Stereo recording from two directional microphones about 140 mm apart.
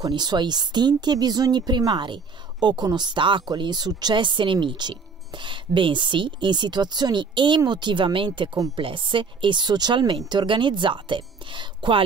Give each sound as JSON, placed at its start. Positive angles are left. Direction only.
{"t": 0.0, "sound": "speech", "side_deg": -30}